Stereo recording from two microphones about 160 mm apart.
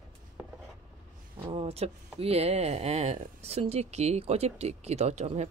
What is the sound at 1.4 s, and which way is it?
Speech, 35° right (ahead or behind).